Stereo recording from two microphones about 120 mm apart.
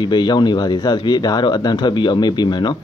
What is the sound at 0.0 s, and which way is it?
Speech, 35° left (ahead or behind).